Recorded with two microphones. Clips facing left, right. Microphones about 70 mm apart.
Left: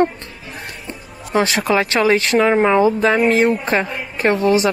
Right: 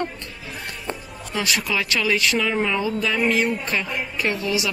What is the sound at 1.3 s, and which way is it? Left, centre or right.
A woman's voice, left.